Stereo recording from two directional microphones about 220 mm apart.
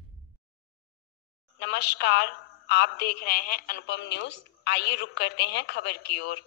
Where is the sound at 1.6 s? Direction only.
50° left (ahead or behind).